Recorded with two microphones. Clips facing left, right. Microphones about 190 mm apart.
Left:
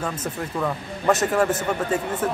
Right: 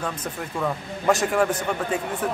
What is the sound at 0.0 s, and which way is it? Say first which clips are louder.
Speech: left 2 dB; 5° left (ahead or behind).